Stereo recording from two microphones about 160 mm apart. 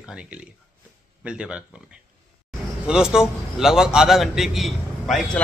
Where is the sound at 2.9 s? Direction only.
5° right (ahead or behind).